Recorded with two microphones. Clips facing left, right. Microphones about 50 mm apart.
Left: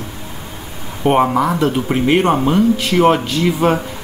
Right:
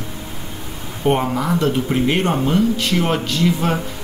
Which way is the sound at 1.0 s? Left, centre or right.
Left.